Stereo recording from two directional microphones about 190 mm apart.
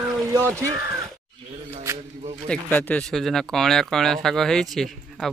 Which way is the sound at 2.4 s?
10° left (ahead or behind).